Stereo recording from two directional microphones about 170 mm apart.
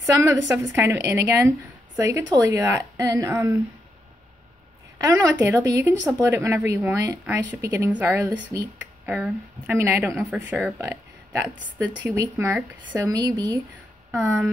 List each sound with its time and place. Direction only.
0.0 s speech: 15° right (ahead or behind)
5.0 s speech: 15° right (ahead or behind)
12.0 s a woman's voice: 15° right (ahead or behind)